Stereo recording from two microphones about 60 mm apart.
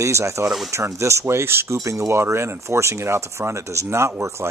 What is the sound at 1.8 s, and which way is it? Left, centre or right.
Speech, right.